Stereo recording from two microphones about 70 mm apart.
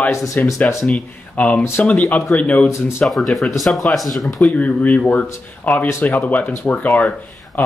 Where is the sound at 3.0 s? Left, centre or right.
Centre.